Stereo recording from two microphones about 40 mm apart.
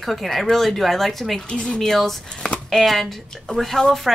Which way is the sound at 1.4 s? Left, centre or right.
Left.